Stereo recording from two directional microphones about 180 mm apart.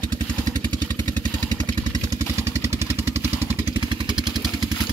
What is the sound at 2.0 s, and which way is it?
Vehicle, 15° right (ahead or behind).